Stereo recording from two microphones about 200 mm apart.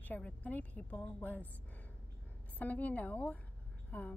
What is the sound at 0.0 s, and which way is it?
A woman's voice, 5° left (ahead or behind).